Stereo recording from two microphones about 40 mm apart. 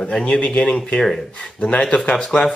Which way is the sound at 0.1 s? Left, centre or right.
Left.